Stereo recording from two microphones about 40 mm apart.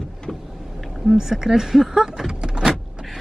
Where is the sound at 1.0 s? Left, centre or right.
Centre.